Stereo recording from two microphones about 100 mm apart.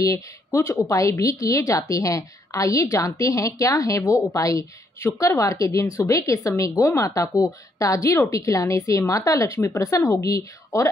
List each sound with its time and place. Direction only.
0.0 s a woman's voice: 35° left (ahead or behind)